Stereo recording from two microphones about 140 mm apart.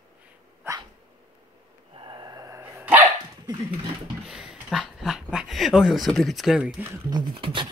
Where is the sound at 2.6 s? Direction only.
15° right (ahead or behind).